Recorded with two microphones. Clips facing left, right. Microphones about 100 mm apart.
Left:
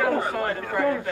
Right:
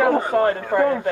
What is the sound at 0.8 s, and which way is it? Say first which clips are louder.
Speech: right 3 dB; 35° right (ahead or behind).